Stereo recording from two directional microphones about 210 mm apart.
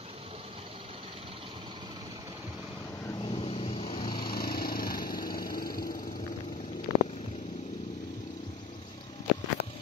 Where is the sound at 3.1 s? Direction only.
25° left (ahead or behind).